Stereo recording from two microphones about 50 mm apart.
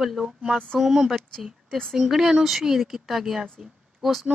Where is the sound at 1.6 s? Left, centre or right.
Centre.